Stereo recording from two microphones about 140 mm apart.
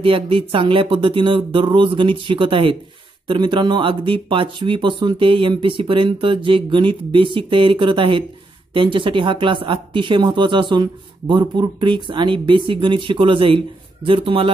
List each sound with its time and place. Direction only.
0.0 s speech: 40° right (ahead or behind)